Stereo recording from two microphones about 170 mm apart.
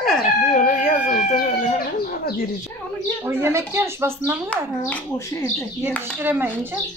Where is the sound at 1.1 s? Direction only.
50° left (ahead or behind).